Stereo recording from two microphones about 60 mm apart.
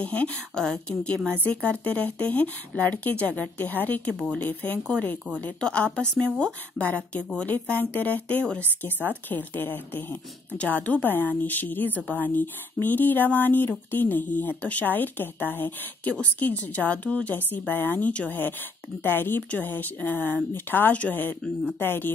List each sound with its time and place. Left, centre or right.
0.0 s speech: left